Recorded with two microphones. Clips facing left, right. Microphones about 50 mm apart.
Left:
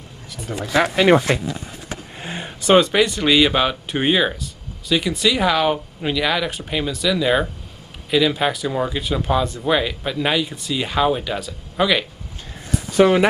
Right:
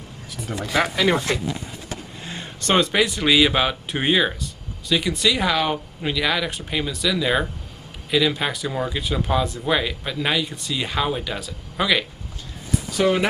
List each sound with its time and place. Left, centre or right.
0.8 s speech: left
2.2 s vehicle: left
2.6 s speech: centre
13.0 s speech: left